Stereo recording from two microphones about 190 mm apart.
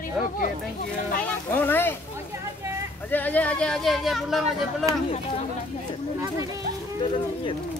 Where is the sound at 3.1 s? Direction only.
10° left (ahead or behind).